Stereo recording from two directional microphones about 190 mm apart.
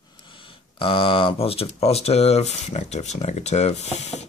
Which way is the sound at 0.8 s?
30° left (ahead or behind).